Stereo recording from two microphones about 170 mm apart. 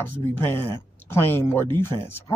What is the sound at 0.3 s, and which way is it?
Speech, 15° left (ahead or behind).